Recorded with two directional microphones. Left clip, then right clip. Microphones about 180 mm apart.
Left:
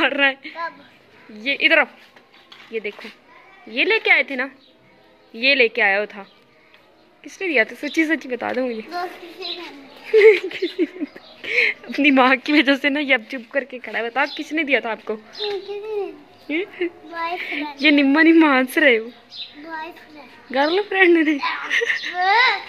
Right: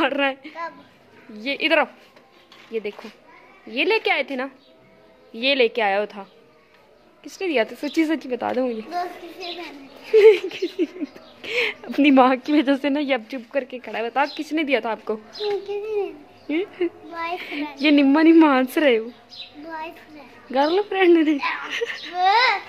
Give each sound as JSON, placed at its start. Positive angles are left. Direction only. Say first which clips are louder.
{"t": 0.0, "sound": "a woman's voice", "louder": "left 3 dB", "side_deg": -10}
{"t": 7.2, "sound": "a woman's voice", "louder": "left 3 dB", "side_deg": -10}
{"t": 11.5, "sound": "a woman's voice", "louder": "left 4 dB", "side_deg": -10}
{"t": 20.5, "sound": "speech", "louder": "left 2 dB", "side_deg": 0}
{"t": 22.2, "sound": "a woman's voice", "louder": "left 1 dB", "side_deg": -15}